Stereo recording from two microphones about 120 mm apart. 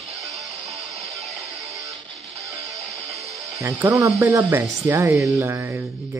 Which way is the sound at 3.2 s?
60° right (ahead or behind).